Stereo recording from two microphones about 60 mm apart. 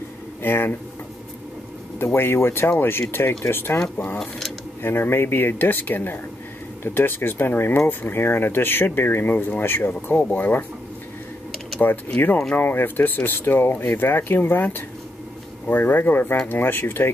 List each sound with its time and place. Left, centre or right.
0.4 s speech: left
2.0 s speech: left
4.8 s speech: left
11.8 s speech: left